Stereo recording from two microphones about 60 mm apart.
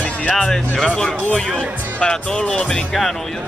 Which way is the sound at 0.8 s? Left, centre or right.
Centre.